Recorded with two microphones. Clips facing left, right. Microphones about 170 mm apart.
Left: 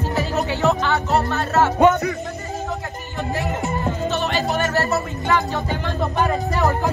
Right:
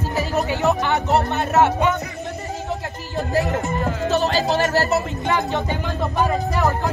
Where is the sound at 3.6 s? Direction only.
40° right (ahead or behind).